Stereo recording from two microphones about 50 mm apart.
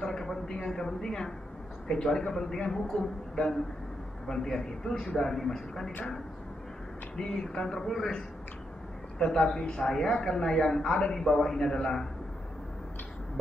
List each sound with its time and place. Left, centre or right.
0.0 s a woman's voice: centre
7.2 s a woman's voice: centre
9.6 s speech: left
9.8 s a woman's voice: centre